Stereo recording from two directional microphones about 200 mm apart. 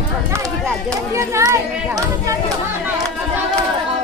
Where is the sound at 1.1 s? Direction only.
15° right (ahead or behind).